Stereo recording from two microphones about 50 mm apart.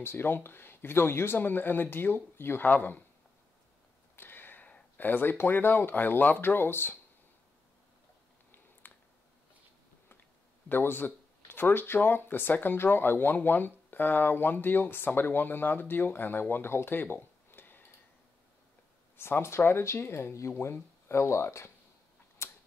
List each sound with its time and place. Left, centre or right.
0.0 s speech: left
2.7 s speech: left
4.2 s a sound: left
4.9 s speech: left
8.8 s a sound: left
10.7 s speech: left
19.1 s speech: left
20.5 s speech: left
22.4 s tick-tock: left